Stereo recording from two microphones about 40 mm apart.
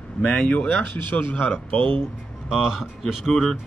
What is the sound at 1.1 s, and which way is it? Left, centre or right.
Speech, left.